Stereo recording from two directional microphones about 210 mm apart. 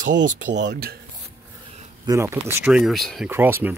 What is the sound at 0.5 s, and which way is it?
Speech, 55° right (ahead or behind).